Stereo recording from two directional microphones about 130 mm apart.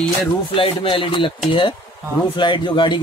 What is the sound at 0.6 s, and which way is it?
Speech, 45° left (ahead or behind).